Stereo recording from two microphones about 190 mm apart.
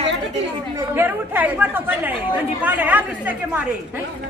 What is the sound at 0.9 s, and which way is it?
A woman's voice, 10° right (ahead or behind).